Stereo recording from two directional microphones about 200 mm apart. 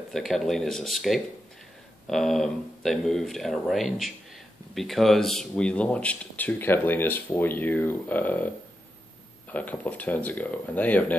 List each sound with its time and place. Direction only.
0.1 s speech: centre (ahead or behind)
9.5 s speech: 10° left (ahead or behind)